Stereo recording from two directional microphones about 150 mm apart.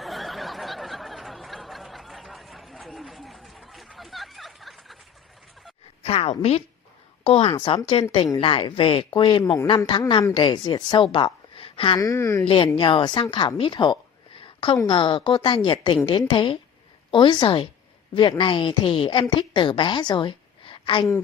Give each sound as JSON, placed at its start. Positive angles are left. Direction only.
{"t": 0.0, "sound": "a sound", "side_deg": 0}
{"t": 6.0, "sound": "a sound", "side_deg": 40}
{"t": 7.2, "sound": "a woman's voice", "side_deg": 35}
{"t": 9.4, "sound": "speech", "side_deg": 20}
{"t": 9.7, "sound": "a woman's voice", "side_deg": 35}
{"t": 12.0, "sound": "speech", "side_deg": 20}
{"t": 12.4, "sound": "a woman's voice", "side_deg": 35}
{"t": 14.4, "sound": "a sound", "side_deg": 35}
{"t": 14.8, "sound": "a woman's voice", "side_deg": 30}